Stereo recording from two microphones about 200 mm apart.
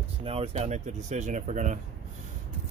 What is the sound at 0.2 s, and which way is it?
Speech, 30° right (ahead or behind).